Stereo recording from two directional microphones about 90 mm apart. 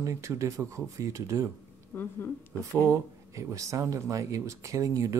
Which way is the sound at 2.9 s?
35° right (ahead or behind).